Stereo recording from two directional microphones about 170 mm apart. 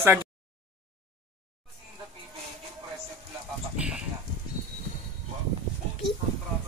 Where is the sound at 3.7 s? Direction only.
5° right (ahead or behind).